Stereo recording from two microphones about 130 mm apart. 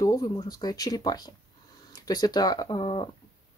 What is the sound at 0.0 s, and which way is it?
Speech, 25° left (ahead or behind).